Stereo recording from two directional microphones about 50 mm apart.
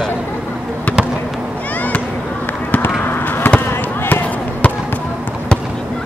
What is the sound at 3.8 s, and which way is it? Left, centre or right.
Fireworks, left.